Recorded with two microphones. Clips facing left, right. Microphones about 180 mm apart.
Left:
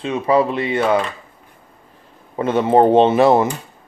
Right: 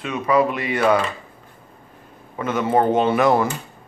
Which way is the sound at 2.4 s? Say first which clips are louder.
Left 5 dB; 30° left (ahead or behind).